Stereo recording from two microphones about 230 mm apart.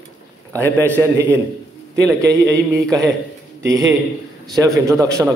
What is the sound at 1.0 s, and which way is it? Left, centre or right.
A man's voice, centre.